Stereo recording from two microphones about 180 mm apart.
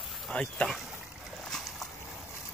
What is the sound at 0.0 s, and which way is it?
Speech, centre (ahead or behind).